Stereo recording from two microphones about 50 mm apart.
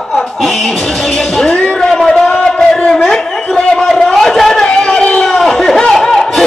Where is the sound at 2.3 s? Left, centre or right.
Centre.